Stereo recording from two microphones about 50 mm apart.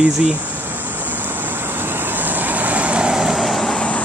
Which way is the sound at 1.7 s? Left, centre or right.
Right.